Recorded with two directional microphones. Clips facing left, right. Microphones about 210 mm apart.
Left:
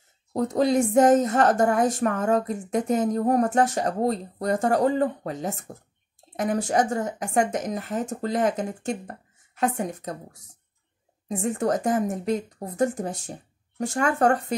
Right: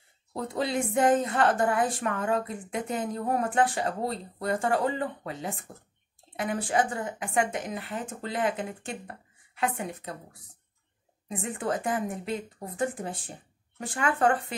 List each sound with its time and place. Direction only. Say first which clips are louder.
0.3 s speech: left 8 dB; 45° left (ahead or behind)